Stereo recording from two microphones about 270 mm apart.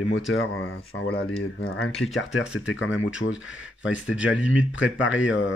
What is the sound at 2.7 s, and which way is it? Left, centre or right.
Speech, left.